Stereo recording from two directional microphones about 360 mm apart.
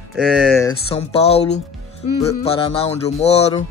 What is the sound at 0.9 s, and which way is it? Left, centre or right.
Speech, centre.